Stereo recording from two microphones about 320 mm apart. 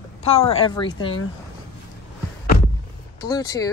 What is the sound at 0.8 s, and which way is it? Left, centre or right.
Speech, left.